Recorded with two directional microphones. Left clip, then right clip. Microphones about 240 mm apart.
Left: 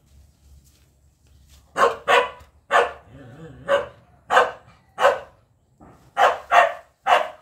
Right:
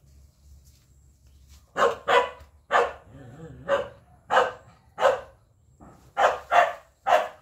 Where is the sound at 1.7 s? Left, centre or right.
Left.